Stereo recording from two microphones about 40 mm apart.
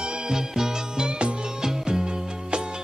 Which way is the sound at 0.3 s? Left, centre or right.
Centre.